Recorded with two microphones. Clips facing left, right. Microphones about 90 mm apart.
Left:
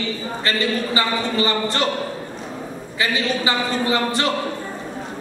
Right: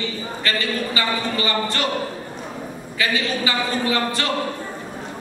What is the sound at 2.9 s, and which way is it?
A man's voice, 25° left (ahead or behind).